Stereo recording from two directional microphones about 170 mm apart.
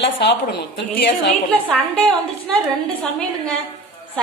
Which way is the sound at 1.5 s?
5° left (ahead or behind).